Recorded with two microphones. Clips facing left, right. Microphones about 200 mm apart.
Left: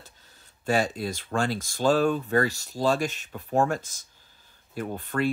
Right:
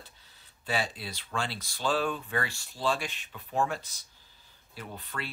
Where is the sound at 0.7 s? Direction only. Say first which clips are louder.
Left 8 dB; 45° left (ahead or behind).